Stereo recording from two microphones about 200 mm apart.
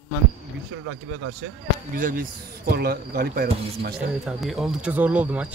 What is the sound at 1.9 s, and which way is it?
Speech, 45° right (ahead or behind).